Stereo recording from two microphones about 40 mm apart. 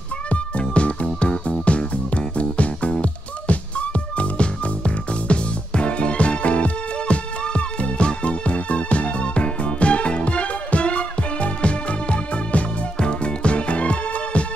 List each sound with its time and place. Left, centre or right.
0.3 s music: left
2.3 s music: left